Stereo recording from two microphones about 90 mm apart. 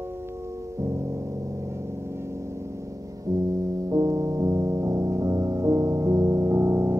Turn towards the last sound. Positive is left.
turn(degrees=-30)  # may be behind; listen again after turning